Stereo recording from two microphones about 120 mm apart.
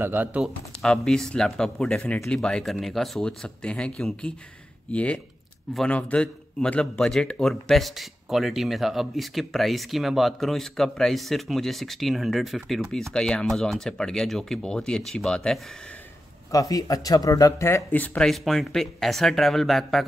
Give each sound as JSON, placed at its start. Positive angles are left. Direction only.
{"t": 0.0, "sound": "speech", "side_deg": -15}
{"t": 0.8, "sound": "a man's voice", "side_deg": 5}
{"t": 16.5, "sound": "speech", "side_deg": 30}
{"t": 17.9, "sound": "a man's voice", "side_deg": 10}